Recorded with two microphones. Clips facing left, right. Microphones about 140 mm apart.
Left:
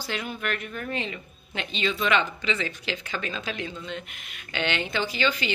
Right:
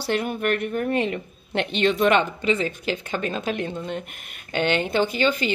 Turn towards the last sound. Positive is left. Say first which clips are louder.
# right 5 dB
turn(degrees=-45)  # may be behind; listen again after turning